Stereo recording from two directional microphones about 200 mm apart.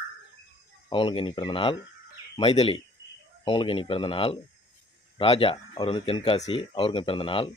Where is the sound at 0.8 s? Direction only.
25° left (ahead or behind).